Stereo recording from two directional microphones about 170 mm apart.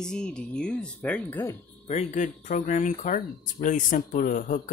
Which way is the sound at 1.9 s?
45° left (ahead or behind).